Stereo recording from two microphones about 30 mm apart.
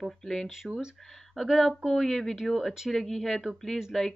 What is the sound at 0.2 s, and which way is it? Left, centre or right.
Speech, centre.